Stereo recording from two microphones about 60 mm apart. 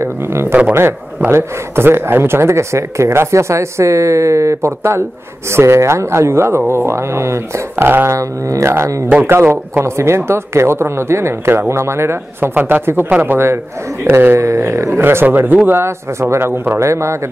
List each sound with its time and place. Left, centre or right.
0.0 s speech: right
7.8 s speech: right
8.2 s speech: right
9.3 s speech: right
9.8 s speech: right
12.5 s speech: right
13.2 s speech: right
15.0 s speech: right